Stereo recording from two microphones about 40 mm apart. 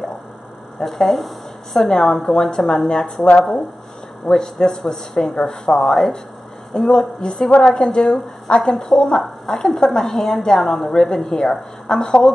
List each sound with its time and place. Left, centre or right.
0.7 s a woman's voice: centre
4.3 s a woman's voice: centre